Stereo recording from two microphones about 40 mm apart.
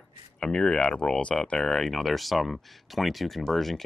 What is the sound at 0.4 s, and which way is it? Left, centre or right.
Speech, left.